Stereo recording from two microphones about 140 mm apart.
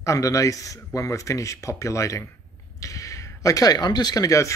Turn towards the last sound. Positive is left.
turn(degrees=25)  # may be behind; listen again after turning